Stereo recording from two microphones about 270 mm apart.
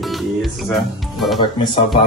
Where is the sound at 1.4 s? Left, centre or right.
Centre.